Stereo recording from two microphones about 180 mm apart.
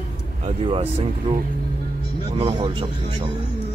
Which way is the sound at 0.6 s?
35° right (ahead or behind).